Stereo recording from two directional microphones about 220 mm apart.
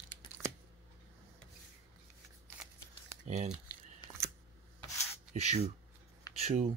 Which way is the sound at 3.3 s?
30° right (ahead or behind).